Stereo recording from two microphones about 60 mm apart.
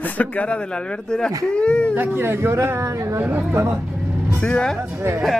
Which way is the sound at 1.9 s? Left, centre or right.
Right.